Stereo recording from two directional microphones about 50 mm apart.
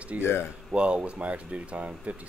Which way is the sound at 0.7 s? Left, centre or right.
Right.